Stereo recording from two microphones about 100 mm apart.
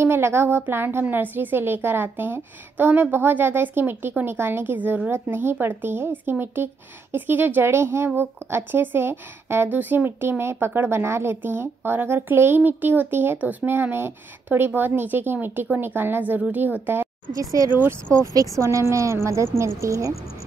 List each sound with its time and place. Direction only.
0.0 s a woman's voice: 25° right (ahead or behind)
17.4 s a woman's voice: 35° right (ahead or behind)
17.7 s a woman's voice: 25° right (ahead or behind)
18.3 s a woman's voice: 35° right (ahead or behind)